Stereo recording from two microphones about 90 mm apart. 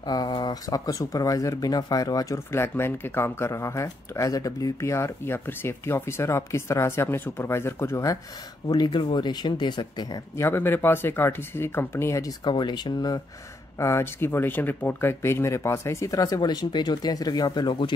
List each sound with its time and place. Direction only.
0.0 s speech: 50° left (ahead or behind)
2.3 s speech: 30° left (ahead or behind)
8.6 s speech: 50° left (ahead or behind)
10.3 s speech: 25° left (ahead or behind)
12.4 s speech: 55° left (ahead or behind)
13.7 s speech: 30° left (ahead or behind)
16.3 s speech: 50° left (ahead or behind)